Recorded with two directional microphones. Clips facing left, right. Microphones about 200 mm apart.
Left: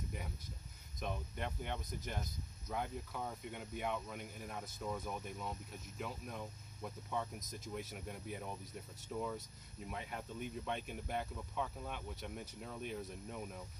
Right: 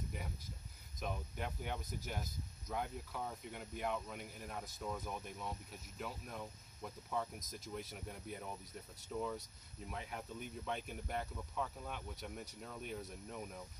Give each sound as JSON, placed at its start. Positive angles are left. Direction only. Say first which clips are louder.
{"t": 0.9, "sound": "speech", "louder": "left 1 dB", "side_deg": 0}